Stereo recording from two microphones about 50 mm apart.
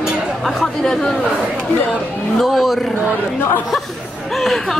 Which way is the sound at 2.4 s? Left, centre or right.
Centre.